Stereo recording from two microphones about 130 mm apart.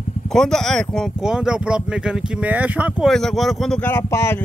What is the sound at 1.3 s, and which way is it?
Speech, 5° right (ahead or behind).